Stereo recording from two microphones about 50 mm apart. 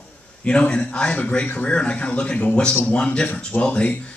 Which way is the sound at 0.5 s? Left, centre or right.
Centre.